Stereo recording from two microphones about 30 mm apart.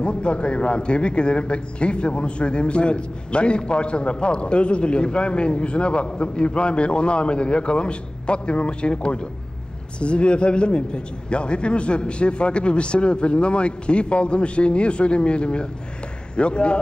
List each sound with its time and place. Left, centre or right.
0.0 s a man's voice: left